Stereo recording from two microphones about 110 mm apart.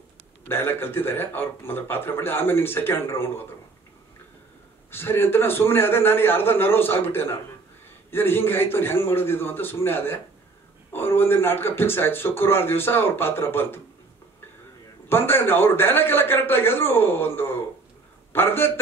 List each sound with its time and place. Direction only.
0.5 s speech: 20° left (ahead or behind)
4.9 s speech: 20° left (ahead or behind)
15.0 s a man's voice: 20° left (ahead or behind)